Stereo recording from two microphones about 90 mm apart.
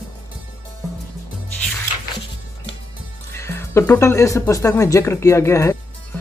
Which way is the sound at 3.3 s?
30° left (ahead or behind).